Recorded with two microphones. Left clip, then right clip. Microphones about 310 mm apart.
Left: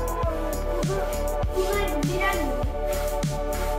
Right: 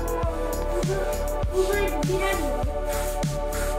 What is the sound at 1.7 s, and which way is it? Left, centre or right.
Music, centre.